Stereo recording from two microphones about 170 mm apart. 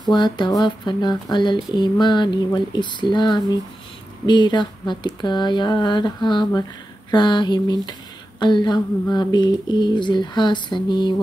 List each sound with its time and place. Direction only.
0.0 s speech: 25° left (ahead or behind)